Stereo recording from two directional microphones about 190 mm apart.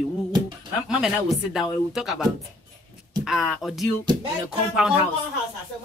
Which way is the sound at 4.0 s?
20° right (ahead or behind).